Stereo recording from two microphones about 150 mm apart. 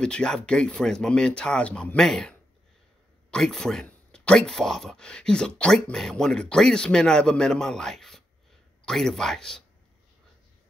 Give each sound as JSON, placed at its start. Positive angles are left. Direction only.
{"t": 0.0, "sound": "speech", "side_deg": 5}